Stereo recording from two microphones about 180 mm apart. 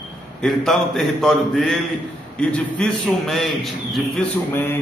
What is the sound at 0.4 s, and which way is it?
A man's voice, centre (ahead or behind).